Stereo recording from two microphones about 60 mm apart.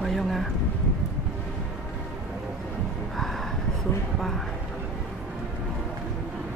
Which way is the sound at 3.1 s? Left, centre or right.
Centre.